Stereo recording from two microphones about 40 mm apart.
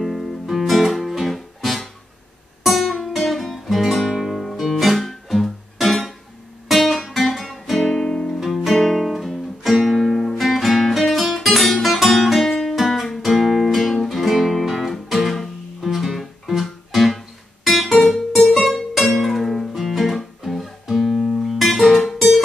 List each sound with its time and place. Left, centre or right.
0.0 s guitar: centre
2.6 s music: centre
6.7 s guitar: centre
7.8 s music: centre
21.5 s music: centre